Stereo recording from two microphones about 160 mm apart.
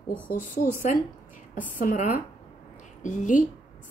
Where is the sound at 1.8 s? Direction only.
55° left (ahead or behind).